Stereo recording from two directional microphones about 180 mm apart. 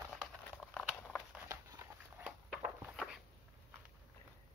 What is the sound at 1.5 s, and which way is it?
Walk, 15° right (ahead or behind).